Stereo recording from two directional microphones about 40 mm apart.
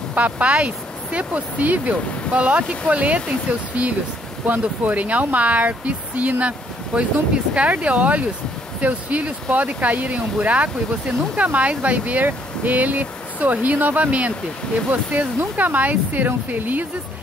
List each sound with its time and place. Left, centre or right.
0.1 s speech: right
6.9 s speech: right
7.5 s speech: right